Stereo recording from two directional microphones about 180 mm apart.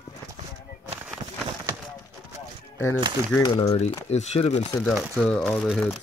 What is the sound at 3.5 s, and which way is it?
Speech, 35° left (ahead or behind).